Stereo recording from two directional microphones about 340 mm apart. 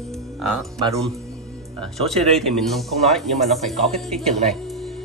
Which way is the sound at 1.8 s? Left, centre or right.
Centre.